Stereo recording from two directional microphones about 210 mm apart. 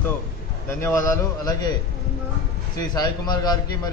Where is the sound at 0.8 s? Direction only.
15° left (ahead or behind).